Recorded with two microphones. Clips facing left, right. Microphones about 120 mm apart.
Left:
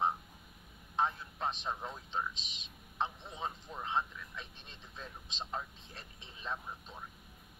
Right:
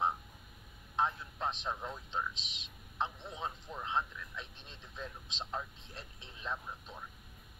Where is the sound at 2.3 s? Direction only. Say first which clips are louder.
Even; 40° left (ahead or behind).